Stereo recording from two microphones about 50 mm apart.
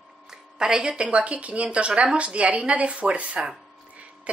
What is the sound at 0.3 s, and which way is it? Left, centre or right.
Speech, centre.